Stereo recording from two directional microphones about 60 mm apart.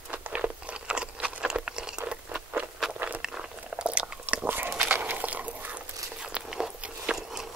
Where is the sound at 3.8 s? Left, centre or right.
Centre.